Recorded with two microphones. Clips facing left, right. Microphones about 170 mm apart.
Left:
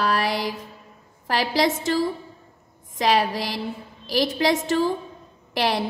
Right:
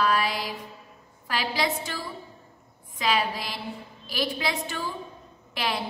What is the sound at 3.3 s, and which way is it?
Speech, 90° left.